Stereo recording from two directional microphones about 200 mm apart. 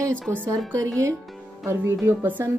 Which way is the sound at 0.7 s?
15° right (ahead or behind).